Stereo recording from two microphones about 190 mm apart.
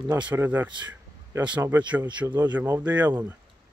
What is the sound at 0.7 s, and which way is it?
Speech, 20° right (ahead or behind).